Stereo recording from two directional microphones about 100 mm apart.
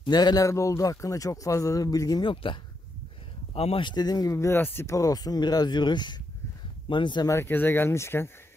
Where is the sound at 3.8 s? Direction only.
45° left (ahead or behind).